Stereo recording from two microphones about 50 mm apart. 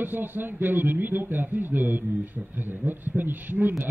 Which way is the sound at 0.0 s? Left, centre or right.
Right.